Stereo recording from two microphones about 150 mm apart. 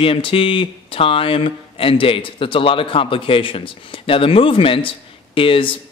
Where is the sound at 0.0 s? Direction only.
35° left (ahead or behind).